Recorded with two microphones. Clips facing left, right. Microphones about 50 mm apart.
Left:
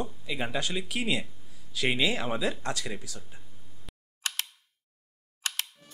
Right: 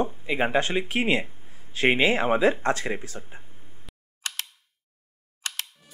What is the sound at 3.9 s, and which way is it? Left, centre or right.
Single-lens reflex camera, centre.